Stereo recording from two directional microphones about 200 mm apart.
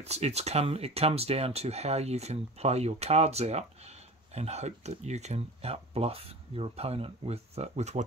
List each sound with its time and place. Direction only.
0.0 s speech: 30° right (ahead or behind)